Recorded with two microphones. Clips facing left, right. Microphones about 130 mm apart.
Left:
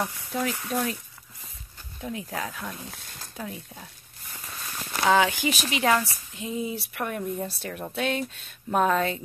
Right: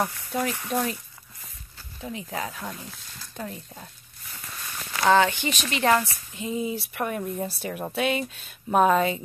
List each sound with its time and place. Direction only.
0.3 s speech: centre (ahead or behind)
2.0 s speech: centre (ahead or behind)
5.0 s speech: 5° left (ahead or behind)